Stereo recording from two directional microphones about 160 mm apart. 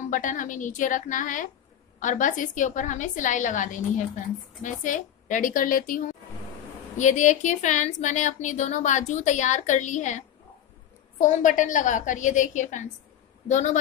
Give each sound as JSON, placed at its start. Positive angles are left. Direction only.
{"t": 0.1, "sound": "a woman's voice", "side_deg": 55}